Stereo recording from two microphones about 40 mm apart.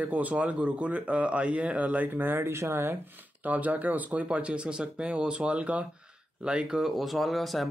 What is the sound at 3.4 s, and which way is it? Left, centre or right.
Speech, right.